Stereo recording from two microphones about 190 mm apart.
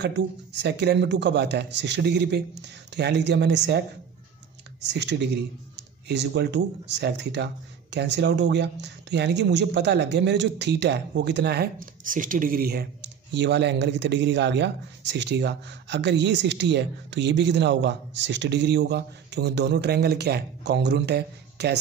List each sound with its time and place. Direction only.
0.0 s speech: 65° right (ahead or behind)
4.8 s speech: 65° right (ahead or behind)
13.3 s speech: 65° right (ahead or behind)